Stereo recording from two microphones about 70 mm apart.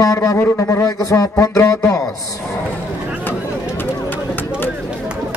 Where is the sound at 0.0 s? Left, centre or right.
Left.